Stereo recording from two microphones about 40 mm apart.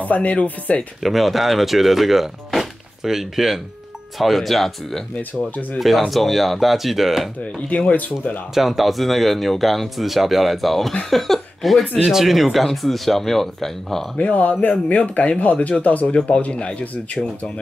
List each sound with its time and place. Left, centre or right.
0.0 s speech: left
1.0 s speech: centre
7.7 s speech: left
8.5 s speech: centre
12.1 s speech: centre
14.1 s speech: left